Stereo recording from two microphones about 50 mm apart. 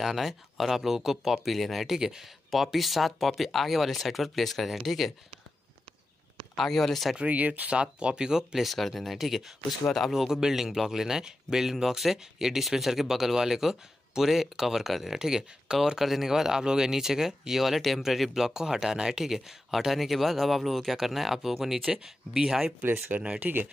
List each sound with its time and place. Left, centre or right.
0.0 s speech: centre
6.5 s speech: centre
7.2 s speech: right; by 8.6 s centre
8.6 s speech: centre
10.2 s speech: centre
23.4 s speech: right